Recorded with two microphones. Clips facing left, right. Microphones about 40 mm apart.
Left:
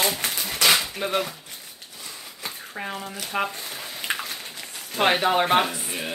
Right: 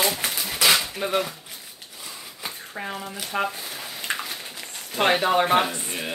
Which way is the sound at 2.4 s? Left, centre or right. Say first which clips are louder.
Even; centre.